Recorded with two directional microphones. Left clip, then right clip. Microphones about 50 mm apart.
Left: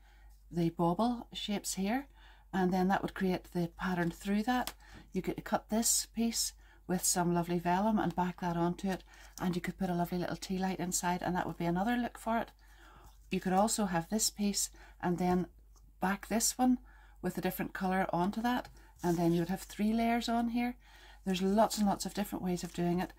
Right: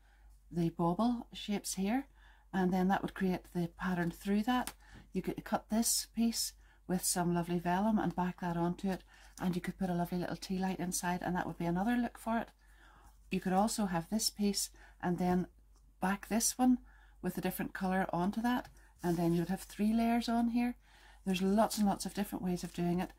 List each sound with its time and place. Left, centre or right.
0.6 s speech: left
18.9 s speech: centre
19.5 s speech: left
21.3 s speech: centre